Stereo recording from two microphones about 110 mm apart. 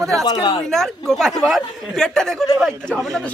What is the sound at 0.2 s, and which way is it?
Speech, 40° left (ahead or behind).